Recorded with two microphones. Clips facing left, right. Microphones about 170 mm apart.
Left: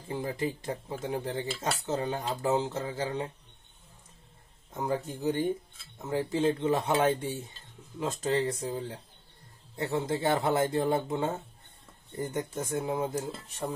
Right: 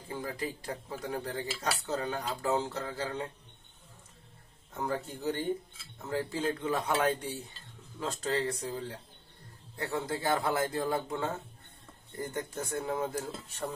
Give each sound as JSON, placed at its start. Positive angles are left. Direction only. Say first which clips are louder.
{"t": 0.1, "sound": "speech", "louder": "left 5 dB", "side_deg": 25}
{"t": 4.7, "sound": "speech", "louder": "left 3 dB", "side_deg": 20}